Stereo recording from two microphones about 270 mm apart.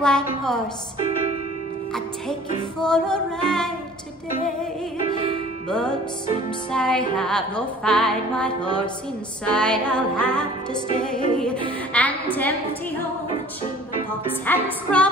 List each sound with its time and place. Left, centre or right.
0.0 s music: centre
2.8 s music: centre
5.7 s music: centre
11.9 s a woman's voice: centre
14.4 s music: centre